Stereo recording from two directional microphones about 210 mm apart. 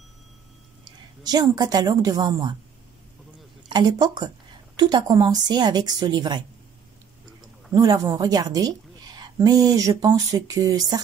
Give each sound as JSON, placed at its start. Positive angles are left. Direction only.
{"t": 1.2, "sound": "a woman's voice", "side_deg": -20}
{"t": 3.6, "sound": "a woman's voice", "side_deg": -20}
{"t": 7.7, "sound": "a woman's voice", "side_deg": -15}